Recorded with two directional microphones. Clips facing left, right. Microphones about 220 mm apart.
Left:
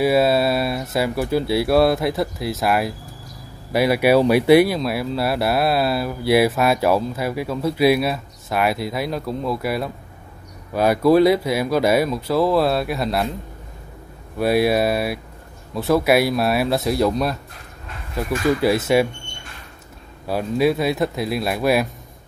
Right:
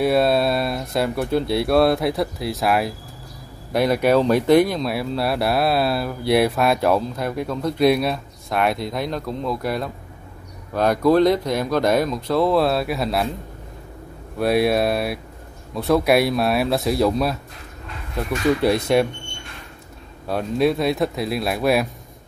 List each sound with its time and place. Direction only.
0.0 s speech: 5° left (ahead or behind)
14.4 s speech: centre (ahead or behind)
20.2 s speech: 5° left (ahead or behind)